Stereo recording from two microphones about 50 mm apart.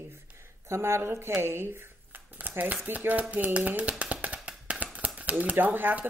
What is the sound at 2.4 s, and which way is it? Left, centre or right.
Speech, right.